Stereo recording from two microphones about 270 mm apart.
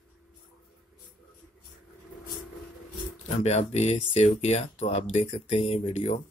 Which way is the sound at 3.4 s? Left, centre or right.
Left.